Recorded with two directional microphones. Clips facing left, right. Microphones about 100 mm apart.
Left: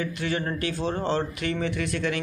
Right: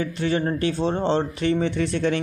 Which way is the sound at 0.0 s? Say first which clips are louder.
Right 5 dB; 30° right (ahead or behind).